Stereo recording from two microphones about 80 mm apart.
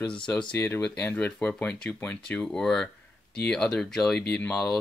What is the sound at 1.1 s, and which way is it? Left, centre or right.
Speech, centre.